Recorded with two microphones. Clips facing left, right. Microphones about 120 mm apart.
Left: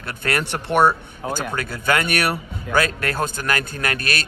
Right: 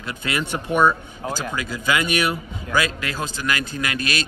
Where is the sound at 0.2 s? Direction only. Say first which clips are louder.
Left 2 dB; 60° left (ahead or behind).